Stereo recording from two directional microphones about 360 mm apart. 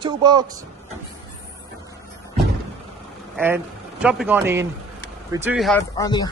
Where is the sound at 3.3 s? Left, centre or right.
Centre.